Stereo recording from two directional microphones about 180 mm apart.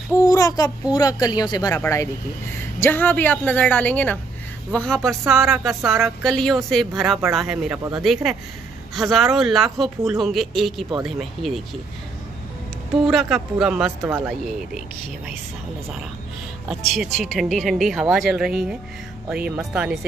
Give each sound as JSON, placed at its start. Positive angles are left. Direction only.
{"t": 0.1, "sound": "a sound", "side_deg": 20}
{"t": 0.9, "sound": "a woman's voice", "side_deg": 20}
{"t": 13.0, "sound": "speech", "side_deg": 0}
{"t": 14.0, "sound": "speech", "side_deg": -10}
{"t": 16.6, "sound": "speech", "side_deg": -5}